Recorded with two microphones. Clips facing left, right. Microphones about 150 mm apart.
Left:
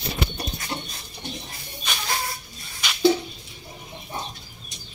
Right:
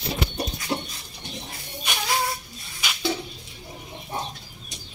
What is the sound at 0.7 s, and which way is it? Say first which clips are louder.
Bird: right 5 dB; 10° right (ahead or behind).